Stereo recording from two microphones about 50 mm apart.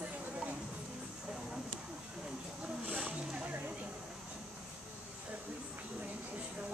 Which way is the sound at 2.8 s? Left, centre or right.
Right.